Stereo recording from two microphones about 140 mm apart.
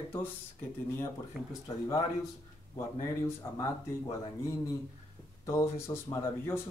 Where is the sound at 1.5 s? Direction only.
25° left (ahead or behind).